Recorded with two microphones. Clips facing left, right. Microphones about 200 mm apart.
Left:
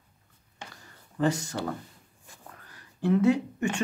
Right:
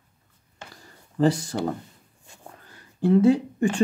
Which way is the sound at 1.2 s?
35° right (ahead or behind).